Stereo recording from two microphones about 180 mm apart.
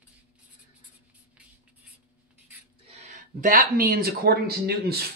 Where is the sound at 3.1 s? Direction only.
45° right (ahead or behind).